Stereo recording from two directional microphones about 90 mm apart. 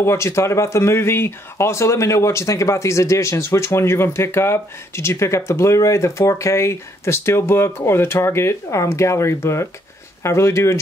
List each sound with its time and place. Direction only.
0.0 s speech: 30° left (ahead or behind)